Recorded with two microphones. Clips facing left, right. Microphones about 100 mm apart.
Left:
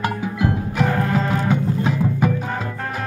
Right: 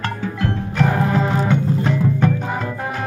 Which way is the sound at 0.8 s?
20° right (ahead or behind).